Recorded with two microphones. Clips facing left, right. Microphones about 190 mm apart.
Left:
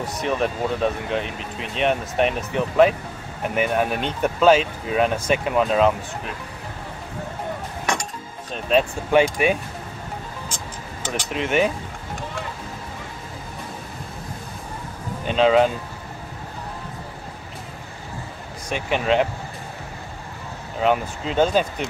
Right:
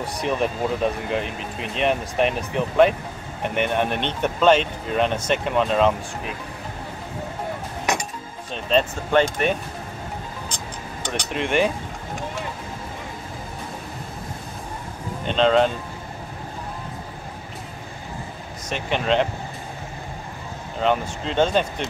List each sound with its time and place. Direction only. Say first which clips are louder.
0.2 s speech: even; centre (ahead or behind)
7.9 s dishes: right 1 dB; 5° right (ahead or behind)
8.6 s speech: left 1 dB; 10° left (ahead or behind)
11.0 s speech: even; 5° left (ahead or behind)
15.2 s speech: left 1 dB; 5° left (ahead or behind)
18.7 s speech: left 1 dB; 5° left (ahead or behind)
20.8 s speech: left 1 dB; 5° left (ahead or behind)